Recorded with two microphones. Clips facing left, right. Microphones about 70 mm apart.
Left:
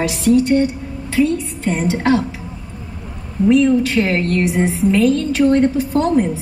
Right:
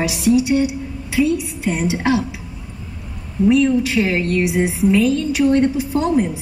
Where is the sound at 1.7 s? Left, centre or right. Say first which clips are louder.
Left 2 dB; left.